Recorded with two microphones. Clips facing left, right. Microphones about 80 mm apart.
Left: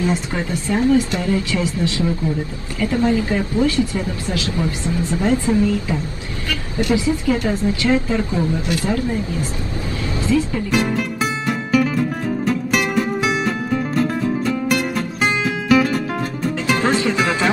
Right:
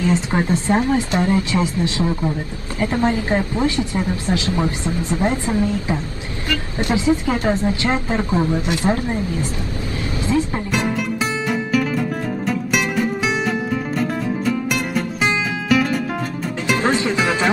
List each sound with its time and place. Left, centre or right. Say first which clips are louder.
0.3 s a woman's voice: right 4 dB; right
11.1 s music: even; centre
16.6 s music: even; right